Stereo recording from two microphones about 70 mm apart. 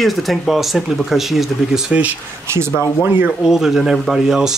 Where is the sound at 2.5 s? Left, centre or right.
Right.